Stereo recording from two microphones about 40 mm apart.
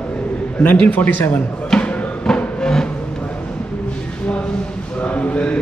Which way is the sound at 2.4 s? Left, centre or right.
Centre.